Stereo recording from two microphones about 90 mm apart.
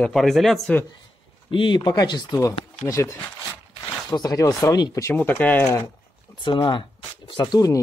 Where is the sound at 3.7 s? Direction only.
50° left (ahead or behind).